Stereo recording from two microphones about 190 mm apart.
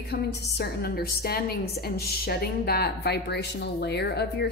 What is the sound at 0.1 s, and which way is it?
A woman's voice, 55° left (ahead or behind).